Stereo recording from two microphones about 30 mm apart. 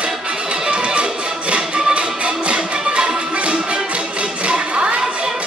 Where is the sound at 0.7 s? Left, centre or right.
Right.